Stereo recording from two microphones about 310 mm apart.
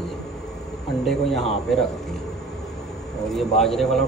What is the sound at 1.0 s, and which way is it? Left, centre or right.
Speech, centre.